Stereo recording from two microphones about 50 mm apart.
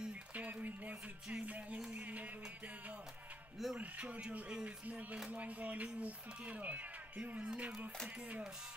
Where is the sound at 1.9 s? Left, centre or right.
Right.